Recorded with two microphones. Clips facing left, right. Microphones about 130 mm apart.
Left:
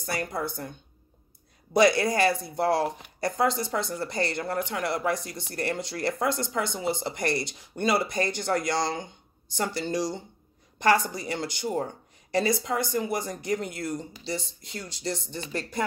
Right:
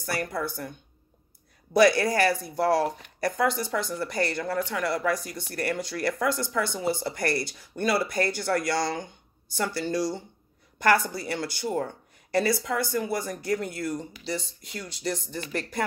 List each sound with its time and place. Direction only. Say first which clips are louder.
0.0 s speech: right 1 dB; 20° left (ahead or behind)
1.8 s speech: right 1 dB; 20° left (ahead or behind)